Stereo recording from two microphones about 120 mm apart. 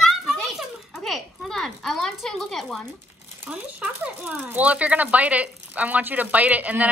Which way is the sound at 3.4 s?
10° right (ahead or behind).